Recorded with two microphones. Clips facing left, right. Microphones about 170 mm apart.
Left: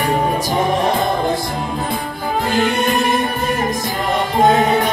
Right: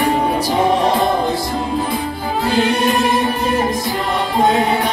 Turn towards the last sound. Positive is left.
turn(degrees=50)  # may be behind; listen again after turning